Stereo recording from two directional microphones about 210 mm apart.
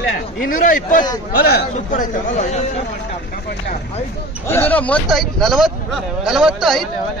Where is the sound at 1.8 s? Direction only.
35° left (ahead or behind).